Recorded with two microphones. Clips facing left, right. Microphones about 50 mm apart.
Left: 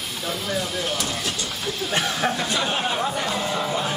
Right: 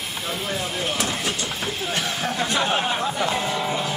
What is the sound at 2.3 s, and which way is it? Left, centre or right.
Speech, right.